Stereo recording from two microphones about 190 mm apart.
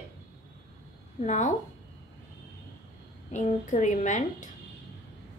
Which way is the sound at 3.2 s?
40° left (ahead or behind).